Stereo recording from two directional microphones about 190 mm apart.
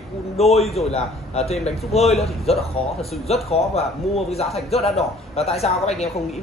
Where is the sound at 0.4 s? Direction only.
30° left (ahead or behind).